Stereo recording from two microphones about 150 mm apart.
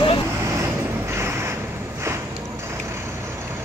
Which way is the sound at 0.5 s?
20° right (ahead or behind).